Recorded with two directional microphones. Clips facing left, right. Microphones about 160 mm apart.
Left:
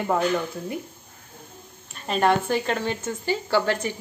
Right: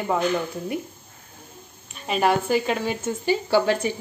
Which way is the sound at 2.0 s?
5° right (ahead or behind).